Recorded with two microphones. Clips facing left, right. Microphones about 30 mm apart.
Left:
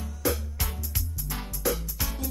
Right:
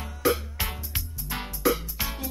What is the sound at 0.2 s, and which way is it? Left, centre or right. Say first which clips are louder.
Music: right 5 dB; right.